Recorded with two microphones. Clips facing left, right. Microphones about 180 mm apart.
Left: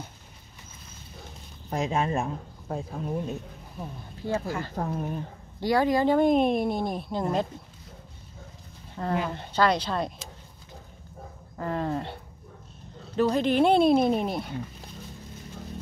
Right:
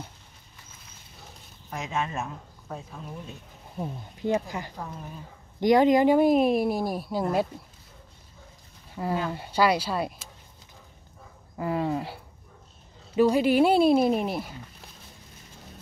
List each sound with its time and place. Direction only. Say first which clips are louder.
1.7 s speech: left 5 dB; 35° left (ahead or behind)
3.8 s speech: right 5 dB; 20° right (ahead or behind)
4.7 s speech: left 8 dB; 50° left (ahead or behind)
5.6 s speech: right 4 dB; 20° right (ahead or behind)
6.1 s speech: right 1 dB; 5° right (ahead or behind)
8.9 s speech: even; 5° right (ahead or behind)
11.5 s speech: right 2 dB; 10° right (ahead or behind)